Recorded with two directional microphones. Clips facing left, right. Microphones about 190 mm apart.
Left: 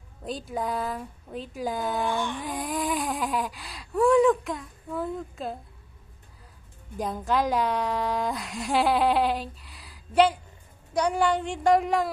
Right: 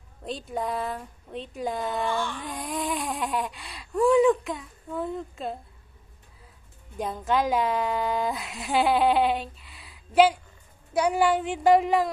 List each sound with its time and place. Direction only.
0.2 s a woman's voice: centre (ahead or behind)
2.1 s carnatic music: 15° left (ahead or behind)
2.4 s a woman's voice: centre (ahead or behind)
7.0 s a woman's voice: centre (ahead or behind)